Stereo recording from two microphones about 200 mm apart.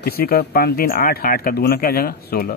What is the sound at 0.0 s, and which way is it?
Speech, 50° left (ahead or behind).